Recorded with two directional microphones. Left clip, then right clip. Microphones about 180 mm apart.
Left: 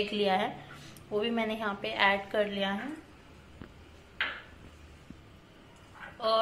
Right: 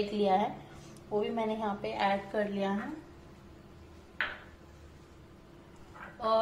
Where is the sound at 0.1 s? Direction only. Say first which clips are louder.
Even; centre (ahead or behind).